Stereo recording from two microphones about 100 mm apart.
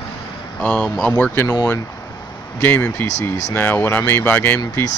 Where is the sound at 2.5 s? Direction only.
20° left (ahead or behind).